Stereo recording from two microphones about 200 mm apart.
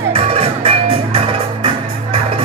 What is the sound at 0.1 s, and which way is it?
Music, 30° right (ahead or behind).